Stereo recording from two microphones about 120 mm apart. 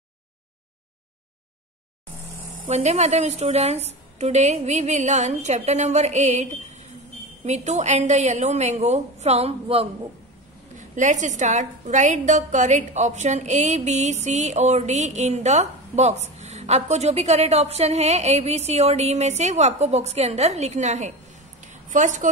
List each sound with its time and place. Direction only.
2.6 s a woman's voice: 70° right (ahead or behind)
10.8 s a woman's voice: 90° right; by 21.1 s 75° right (ahead or behind)
21.6 s a sound: 90° right